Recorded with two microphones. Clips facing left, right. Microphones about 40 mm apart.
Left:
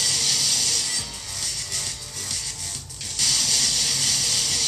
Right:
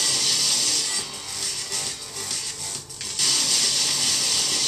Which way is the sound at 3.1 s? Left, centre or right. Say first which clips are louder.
Even; centre.